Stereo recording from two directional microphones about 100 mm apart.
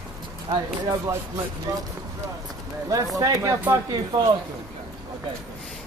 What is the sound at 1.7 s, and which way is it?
Speech, 35° right (ahead or behind).